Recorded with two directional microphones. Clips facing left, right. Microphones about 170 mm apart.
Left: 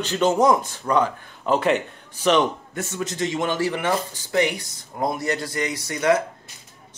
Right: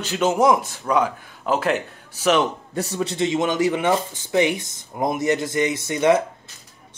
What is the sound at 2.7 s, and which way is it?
Speech, 35° right (ahead or behind).